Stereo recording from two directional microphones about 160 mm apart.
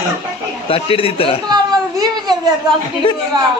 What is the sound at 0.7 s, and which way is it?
Speech, 35° left (ahead or behind).